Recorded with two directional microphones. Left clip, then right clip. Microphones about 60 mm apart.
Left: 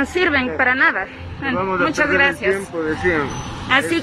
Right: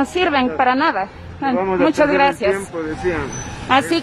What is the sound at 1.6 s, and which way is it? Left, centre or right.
Speech, right.